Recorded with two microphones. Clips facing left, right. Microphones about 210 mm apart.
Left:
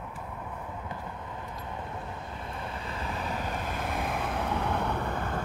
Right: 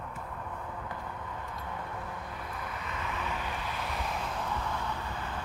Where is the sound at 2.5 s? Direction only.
30° left (ahead or behind).